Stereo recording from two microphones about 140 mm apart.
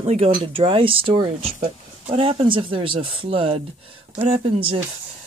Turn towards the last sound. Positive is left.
turn(degrees=-40)  # may be behind; listen again after turning